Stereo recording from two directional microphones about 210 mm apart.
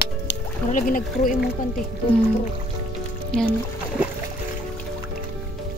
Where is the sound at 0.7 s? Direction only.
40° left (ahead or behind).